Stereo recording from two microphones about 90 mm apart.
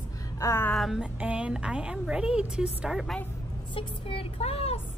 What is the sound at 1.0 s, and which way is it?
A woman's voice, 15° right (ahead or behind).